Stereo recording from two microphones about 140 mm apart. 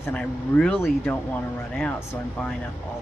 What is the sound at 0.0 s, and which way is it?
Speech, 5° left (ahead or behind).